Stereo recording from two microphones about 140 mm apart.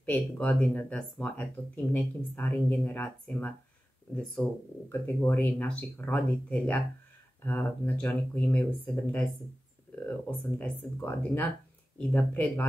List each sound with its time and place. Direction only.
0.0 s speech: 10° left (ahead or behind)
10.6 s speech: 10° left (ahead or behind)